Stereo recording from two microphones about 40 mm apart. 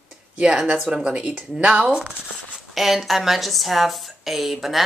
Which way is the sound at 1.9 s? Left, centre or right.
Right.